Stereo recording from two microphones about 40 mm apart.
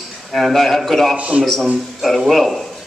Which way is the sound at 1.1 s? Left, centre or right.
Right.